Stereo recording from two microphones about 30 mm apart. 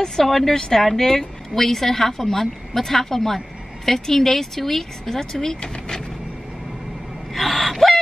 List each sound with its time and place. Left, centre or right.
0.0 s speech: centre
0.6 s speech: centre
7.3 s gasp: centre